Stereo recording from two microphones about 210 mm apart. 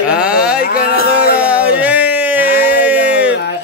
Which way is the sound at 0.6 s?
45° left (ahead or behind).